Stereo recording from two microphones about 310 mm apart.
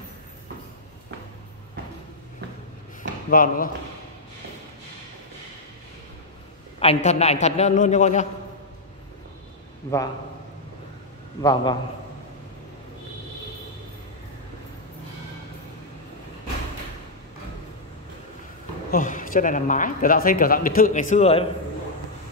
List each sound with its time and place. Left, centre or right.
3.0 s a sound: left
6.8 s speech: left
9.8 s a man's voice: centre
11.4 s a man's voice: centre
18.9 s speech: left